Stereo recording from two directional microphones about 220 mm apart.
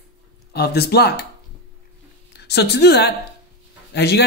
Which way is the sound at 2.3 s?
50° left (ahead or behind).